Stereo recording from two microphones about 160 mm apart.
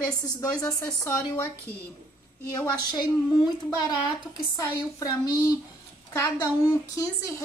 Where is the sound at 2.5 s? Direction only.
25° left (ahead or behind).